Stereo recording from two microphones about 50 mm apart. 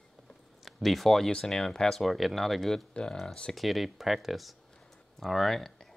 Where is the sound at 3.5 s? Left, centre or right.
Centre.